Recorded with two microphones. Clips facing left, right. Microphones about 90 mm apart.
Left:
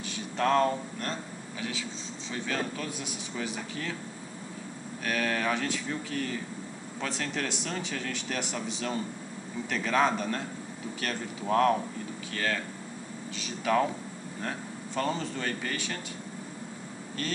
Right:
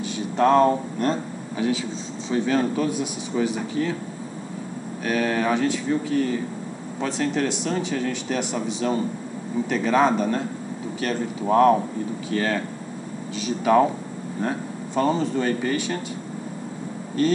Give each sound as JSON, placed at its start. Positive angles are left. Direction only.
{"t": 0.0, "sound": "a sound", "side_deg": -15}
{"t": 2.3, "sound": "speech", "side_deg": -20}
{"t": 5.0, "sound": "a man's voice", "side_deg": -10}
{"t": 13.7, "sound": "speech", "side_deg": -15}